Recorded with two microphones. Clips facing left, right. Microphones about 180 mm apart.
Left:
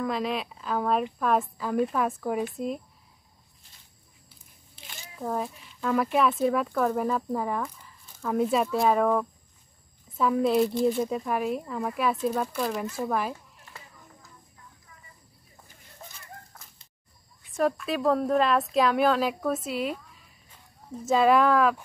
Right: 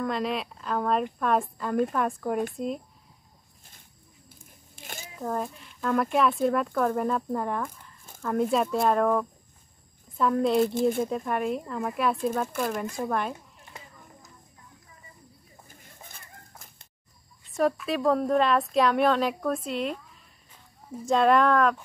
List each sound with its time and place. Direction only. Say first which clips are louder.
0.0 s speech: even; centre (ahead or behind)
4.3 s a sound: right 5 dB; 50° right (ahead or behind)
5.2 s speech: even; 5° left (ahead or behind)
10.7 s speech: even; 50° right (ahead or behind)
11.0 s speech: even; centre (ahead or behind)
16.1 s dog: left 3 dB; 55° right (ahead or behind)
17.6 s speech: right 1 dB; centre (ahead or behind)
21.0 s speech: even; 5° left (ahead or behind)